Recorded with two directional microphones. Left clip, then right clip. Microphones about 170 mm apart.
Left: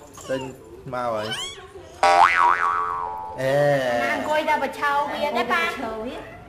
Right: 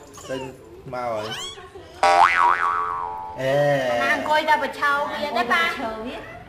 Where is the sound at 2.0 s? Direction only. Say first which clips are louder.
Even; centre (ahead or behind).